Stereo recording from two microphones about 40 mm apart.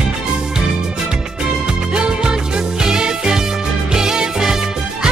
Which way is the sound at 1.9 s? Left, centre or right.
Right.